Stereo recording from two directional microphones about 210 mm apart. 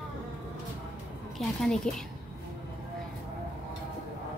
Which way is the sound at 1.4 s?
Centre (ahead or behind).